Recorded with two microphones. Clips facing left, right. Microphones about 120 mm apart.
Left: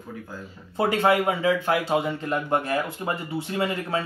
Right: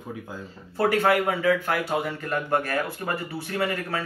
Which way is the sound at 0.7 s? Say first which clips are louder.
Even; 20° left (ahead or behind).